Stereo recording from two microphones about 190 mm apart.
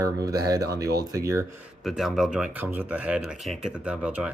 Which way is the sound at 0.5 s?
20° right (ahead or behind).